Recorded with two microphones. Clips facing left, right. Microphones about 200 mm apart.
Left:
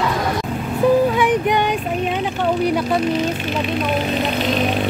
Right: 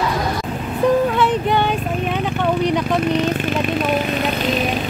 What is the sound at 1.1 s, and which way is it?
Child singing, 15° left (ahead or behind).